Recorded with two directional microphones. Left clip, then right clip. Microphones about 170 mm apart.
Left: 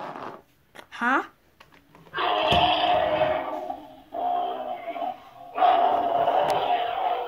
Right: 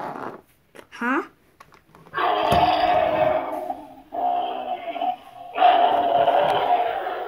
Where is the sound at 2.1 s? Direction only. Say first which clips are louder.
Right 2 dB; 15° right (ahead or behind).